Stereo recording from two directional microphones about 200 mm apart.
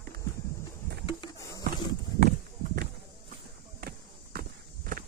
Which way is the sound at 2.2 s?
45° right (ahead or behind).